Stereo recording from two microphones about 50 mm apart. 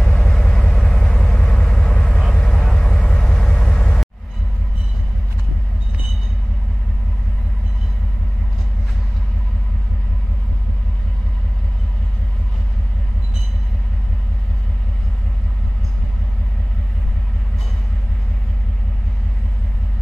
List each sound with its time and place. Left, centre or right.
0.1 s vehicle: centre
2.9 s vehicle: left
3.2 s vehicle: centre